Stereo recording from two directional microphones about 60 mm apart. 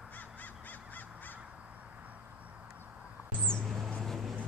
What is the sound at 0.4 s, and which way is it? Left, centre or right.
Crow, left.